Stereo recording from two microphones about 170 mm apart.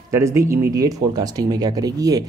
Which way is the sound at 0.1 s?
15° right (ahead or behind).